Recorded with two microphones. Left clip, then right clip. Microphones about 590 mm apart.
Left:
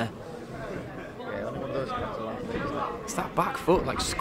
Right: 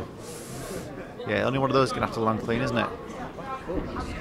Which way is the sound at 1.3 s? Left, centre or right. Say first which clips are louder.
Right 9 dB; right.